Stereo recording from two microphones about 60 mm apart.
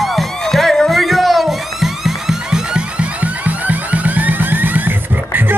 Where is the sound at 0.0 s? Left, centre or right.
Centre.